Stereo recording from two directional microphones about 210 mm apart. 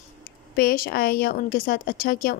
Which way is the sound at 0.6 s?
45° left (ahead or behind).